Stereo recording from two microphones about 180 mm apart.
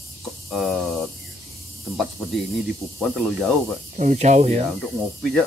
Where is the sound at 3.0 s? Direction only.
Centre (ahead or behind).